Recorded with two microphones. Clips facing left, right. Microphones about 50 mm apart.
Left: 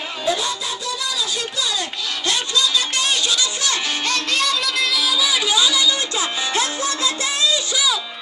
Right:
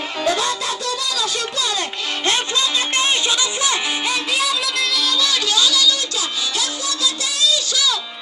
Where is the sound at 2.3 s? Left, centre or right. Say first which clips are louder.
Even; right.